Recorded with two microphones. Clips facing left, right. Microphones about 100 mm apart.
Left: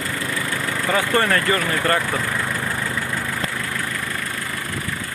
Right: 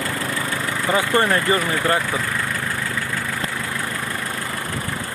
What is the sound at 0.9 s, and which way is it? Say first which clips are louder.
Speech: right 1 dB; 20° right (ahead or behind).